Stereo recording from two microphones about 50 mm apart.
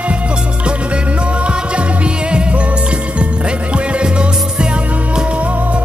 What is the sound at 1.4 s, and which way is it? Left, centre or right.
Music, right.